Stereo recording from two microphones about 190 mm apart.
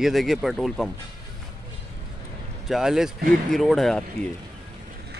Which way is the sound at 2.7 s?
Centre (ahead or behind).